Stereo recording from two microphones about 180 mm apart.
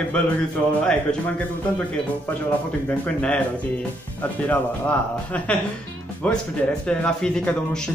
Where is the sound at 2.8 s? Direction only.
5° left (ahead or behind).